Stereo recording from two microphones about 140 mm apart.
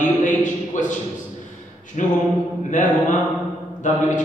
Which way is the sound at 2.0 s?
60° left (ahead or behind).